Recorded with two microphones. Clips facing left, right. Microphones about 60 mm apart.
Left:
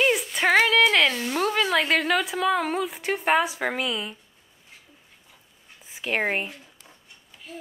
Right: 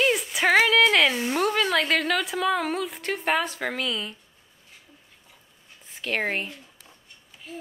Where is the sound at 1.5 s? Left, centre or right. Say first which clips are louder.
Left 1 dB; centre.